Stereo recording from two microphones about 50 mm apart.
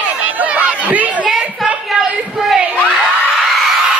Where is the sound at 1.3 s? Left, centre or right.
Centre.